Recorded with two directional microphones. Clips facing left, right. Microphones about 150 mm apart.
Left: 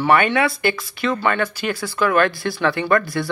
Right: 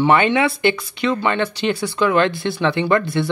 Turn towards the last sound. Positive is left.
turn(degrees=-20)  # may be behind; listen again after turning